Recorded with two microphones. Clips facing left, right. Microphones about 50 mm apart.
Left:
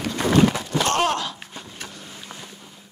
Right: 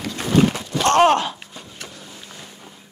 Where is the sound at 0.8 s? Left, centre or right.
Right.